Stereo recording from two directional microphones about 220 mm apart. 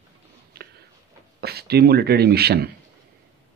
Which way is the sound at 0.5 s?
45° right (ahead or behind).